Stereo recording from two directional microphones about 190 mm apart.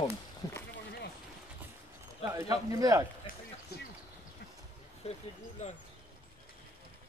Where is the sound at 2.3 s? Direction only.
15° right (ahead or behind).